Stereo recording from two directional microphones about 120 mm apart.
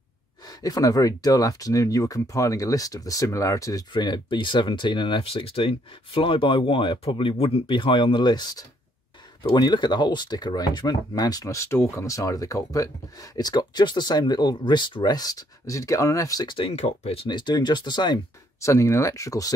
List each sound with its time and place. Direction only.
0.5 s speech: 30° left (ahead or behind)
16.5 s speech: 55° left (ahead or behind)
17.3 s speech: 35° left (ahead or behind)
18.6 s speech: 25° left (ahead or behind)